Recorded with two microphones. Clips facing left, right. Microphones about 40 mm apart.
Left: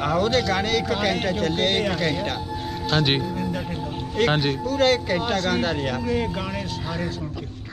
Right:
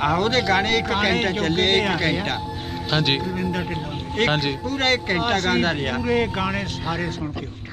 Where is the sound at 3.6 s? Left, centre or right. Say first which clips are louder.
Right 2 dB; right.